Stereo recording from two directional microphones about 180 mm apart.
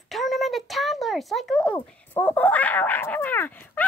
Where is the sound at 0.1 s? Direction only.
Centre (ahead or behind).